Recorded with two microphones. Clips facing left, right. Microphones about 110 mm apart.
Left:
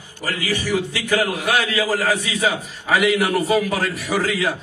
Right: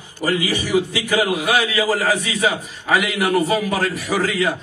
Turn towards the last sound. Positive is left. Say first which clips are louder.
# right 1 dB
turn(degrees=0)  # may be behind; listen again after turning